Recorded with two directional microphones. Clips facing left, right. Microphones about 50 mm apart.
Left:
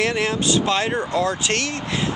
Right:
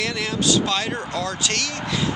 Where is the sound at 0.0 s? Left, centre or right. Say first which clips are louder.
Left 3 dB; left.